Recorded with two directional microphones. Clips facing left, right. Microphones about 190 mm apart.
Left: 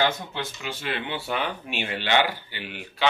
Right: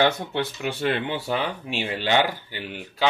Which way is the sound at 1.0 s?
40° right (ahead or behind).